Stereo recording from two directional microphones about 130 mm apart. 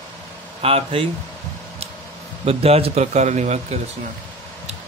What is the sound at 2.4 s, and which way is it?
Speech, 50° right (ahead or behind).